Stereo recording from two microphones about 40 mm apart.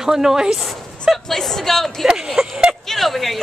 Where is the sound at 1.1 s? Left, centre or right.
Centre.